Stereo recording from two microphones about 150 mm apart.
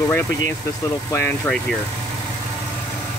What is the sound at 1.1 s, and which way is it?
Speech, 15° left (ahead or behind).